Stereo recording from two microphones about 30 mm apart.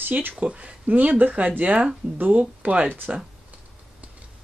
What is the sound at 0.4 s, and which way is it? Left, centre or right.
Speech, right.